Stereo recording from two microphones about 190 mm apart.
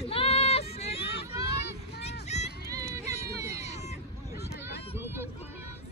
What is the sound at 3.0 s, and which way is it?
Run, 35° left (ahead or behind).